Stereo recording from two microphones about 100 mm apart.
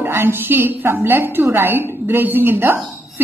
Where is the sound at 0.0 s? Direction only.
20° right (ahead or behind).